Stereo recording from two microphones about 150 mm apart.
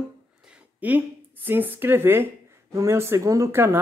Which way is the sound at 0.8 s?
10° right (ahead or behind).